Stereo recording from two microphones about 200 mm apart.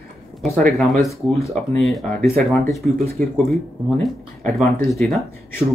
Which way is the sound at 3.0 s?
50° right (ahead or behind).